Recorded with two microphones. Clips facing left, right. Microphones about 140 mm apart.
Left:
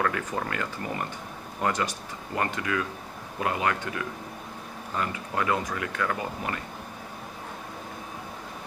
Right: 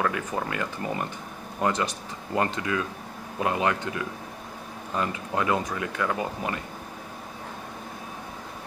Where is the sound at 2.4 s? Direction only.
25° right (ahead or behind).